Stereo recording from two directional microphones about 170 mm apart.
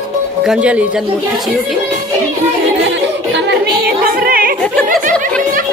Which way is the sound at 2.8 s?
90° right.